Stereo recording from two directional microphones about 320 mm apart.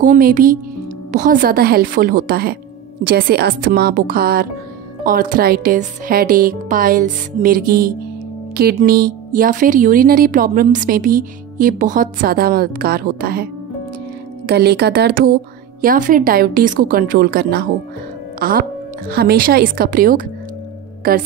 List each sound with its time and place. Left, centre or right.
0.0 s a woman's voice: right